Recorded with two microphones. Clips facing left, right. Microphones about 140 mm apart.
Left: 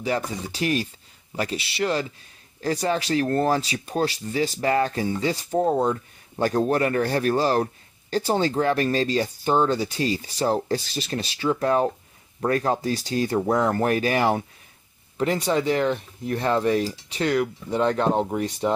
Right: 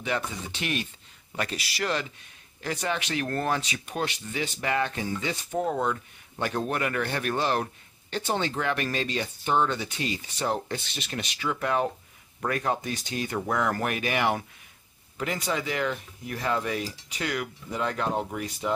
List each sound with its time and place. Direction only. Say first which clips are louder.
0.0 s speech: left 4 dB; 35° left (ahead or behind)